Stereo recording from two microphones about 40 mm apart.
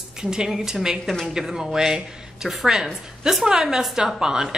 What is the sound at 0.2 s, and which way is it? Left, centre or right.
A woman's voice, centre.